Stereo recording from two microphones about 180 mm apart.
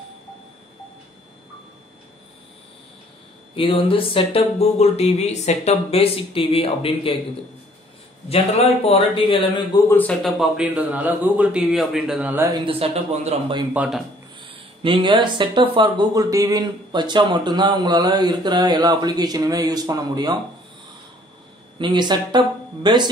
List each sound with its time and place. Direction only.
3.5 s speech: 30° left (ahead or behind)
8.3 s speech: 35° left (ahead or behind)
9.8 s a man's voice: 10° left (ahead or behind); by 12.4 s 5° right (ahead or behind)
12.5 s speech: 30° right (ahead or behind)
13.7 s a man's voice: centre (ahead or behind)
14.5 s speech: 30° right (ahead or behind)
21.7 s speech: 25° right (ahead or behind)